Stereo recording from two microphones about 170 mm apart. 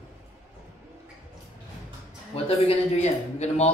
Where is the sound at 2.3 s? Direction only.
35° left (ahead or behind).